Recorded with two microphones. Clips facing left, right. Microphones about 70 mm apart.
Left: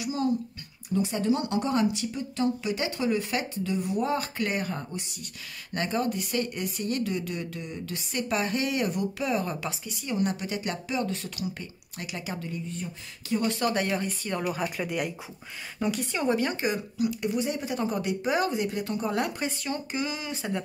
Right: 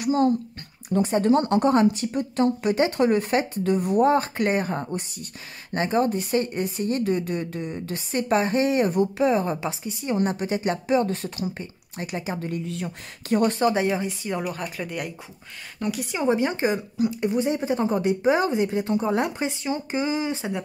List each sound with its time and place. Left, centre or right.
0.0 s speech: right
12.4 s speech: right
13.3 s speech: right
13.6 s speech: right
14.4 s speech: centre
16.1 s speech: centre